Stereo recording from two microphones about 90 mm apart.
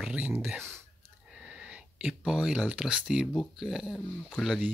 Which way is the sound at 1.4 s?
15° right (ahead or behind).